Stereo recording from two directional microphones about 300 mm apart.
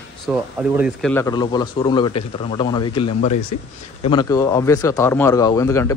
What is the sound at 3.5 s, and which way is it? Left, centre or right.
Speech, left.